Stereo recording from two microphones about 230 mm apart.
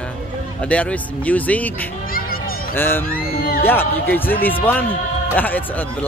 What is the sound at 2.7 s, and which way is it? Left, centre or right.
Speech, centre.